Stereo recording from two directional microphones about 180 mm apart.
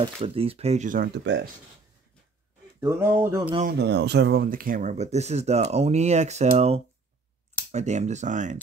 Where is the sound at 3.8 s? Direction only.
70° right (ahead or behind); by 8.5 s 40° right (ahead or behind).